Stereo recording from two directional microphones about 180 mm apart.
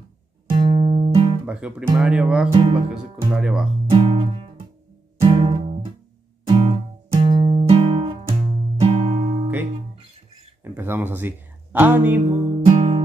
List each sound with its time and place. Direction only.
0.5 s music: 30° right (ahead or behind)
1.4 s speech: 5° right (ahead or behind)
2.5 s speech: 30° right (ahead or behind)
3.3 s speech: 5° right (ahead or behind)
3.9 s guitar: 30° right (ahead or behind)
5.2 s music: 25° right (ahead or behind)
10.6 s speech: 10° right (ahead or behind)
12.3 s music: 40° right (ahead or behind)